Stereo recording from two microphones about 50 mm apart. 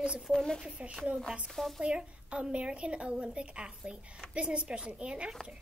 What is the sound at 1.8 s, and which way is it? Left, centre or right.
A woman's voice, right.